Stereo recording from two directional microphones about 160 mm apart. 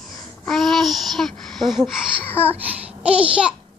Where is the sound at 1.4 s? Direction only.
Centre (ahead or behind).